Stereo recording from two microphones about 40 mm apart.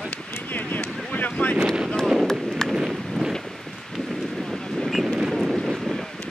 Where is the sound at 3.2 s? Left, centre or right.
Centre.